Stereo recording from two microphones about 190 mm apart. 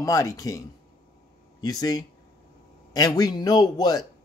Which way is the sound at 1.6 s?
20° left (ahead or behind).